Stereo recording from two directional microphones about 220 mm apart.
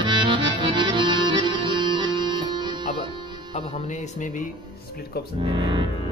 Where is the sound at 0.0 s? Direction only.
20° right (ahead or behind).